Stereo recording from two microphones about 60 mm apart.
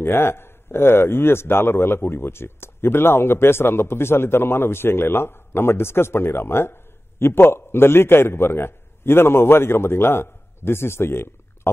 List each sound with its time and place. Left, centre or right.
0.0 s a man's voice: left